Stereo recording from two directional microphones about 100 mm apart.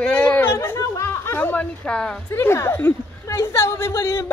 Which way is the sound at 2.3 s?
25° left (ahead or behind).